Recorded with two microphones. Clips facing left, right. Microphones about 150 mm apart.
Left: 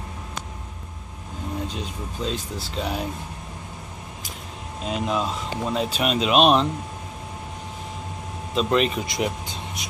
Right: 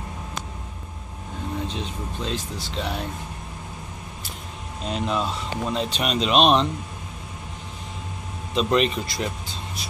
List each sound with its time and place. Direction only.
1.7 s speech: 5° left (ahead or behind)
4.8 s speech: 5° left (ahead or behind)
8.5 s speech: centre (ahead or behind)
9.0 s speech: 20° left (ahead or behind)